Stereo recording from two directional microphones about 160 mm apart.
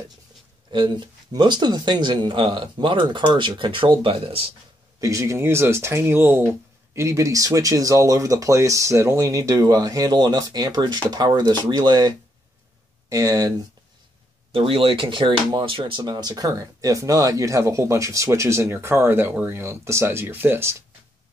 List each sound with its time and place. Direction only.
0.7 s speech: 30° right (ahead or behind)
5.0 s speech: 20° right (ahead or behind)
14.5 s speech: 35° right (ahead or behind); by 20.7 s 15° right (ahead or behind)